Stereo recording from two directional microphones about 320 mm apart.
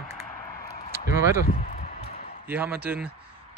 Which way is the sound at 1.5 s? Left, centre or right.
Left.